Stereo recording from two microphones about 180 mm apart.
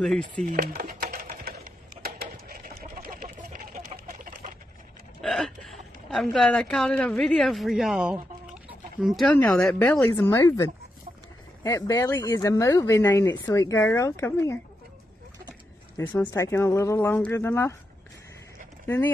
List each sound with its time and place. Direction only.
0.5 s speech: 55° right (ahead or behind)
1.4 s a sound: 55° right (ahead or behind)
5.2 s hiccup: centre (ahead or behind)
6.0 s a woman's voice: centre (ahead or behind)
16.1 s speech: 15° left (ahead or behind)
18.9 s speech: 10° left (ahead or behind)